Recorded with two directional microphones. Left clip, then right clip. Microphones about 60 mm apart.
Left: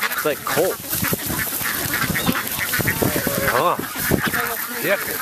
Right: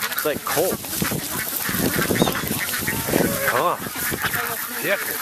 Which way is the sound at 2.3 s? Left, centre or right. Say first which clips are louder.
Left 3 dB; left.